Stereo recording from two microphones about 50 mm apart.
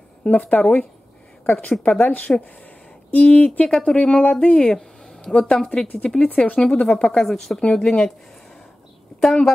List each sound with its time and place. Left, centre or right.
0.2 s a woman's voice: left
7.2 s speech: centre
9.2 s speech: centre